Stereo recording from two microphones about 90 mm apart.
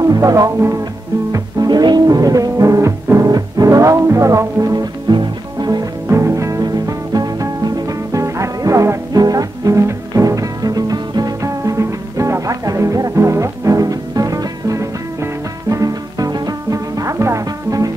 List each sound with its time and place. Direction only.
0.0 s music: 40° right (ahead or behind)
1.3 s music: 45° right (ahead or behind)
5.0 s music: 55° right (ahead or behind)
6.0 s music: 30° right (ahead or behind)